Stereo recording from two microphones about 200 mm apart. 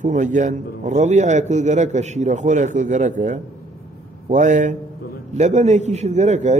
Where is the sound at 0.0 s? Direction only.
40° right (ahead or behind).